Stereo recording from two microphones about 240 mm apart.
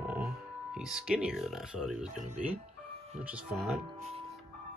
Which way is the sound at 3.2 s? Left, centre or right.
Centre.